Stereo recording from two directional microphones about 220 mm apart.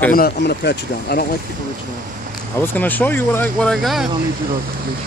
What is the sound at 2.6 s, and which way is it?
Speech, 10° left (ahead or behind).